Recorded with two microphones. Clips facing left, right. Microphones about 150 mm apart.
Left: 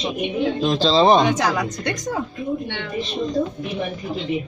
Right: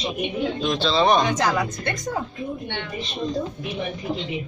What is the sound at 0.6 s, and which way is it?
Speech, 35° left (ahead or behind).